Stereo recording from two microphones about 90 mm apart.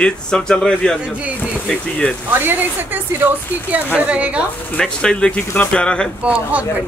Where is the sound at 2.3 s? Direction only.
25° right (ahead or behind).